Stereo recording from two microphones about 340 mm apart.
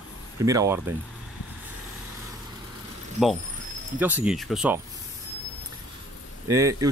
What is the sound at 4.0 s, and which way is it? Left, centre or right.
Speech, centre.